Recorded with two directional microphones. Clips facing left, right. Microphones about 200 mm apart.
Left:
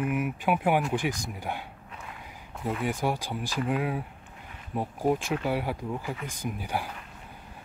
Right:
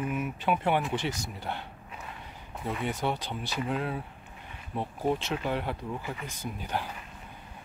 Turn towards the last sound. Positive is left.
turn(degrees=10)  # may be behind; listen again after turning